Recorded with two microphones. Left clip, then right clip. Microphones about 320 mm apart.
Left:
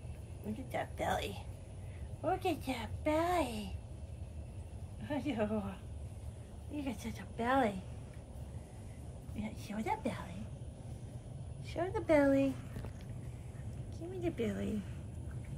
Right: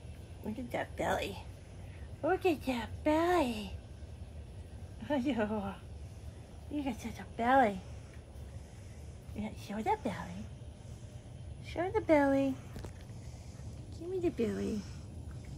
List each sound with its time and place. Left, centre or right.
0.7 s a woman's voice: right
5.0 s a woman's voice: right
6.8 s a woman's voice: right
9.4 s a woman's voice: right
11.6 s a woman's voice: right
14.2 s a woman's voice: right